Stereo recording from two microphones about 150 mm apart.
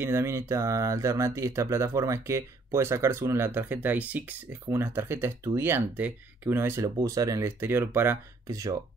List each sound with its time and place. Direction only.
0.0 s speech: 15° right (ahead or behind)